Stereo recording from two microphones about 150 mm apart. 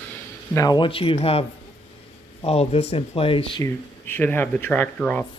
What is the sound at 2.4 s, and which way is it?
A woman's voice, 40° left (ahead or behind).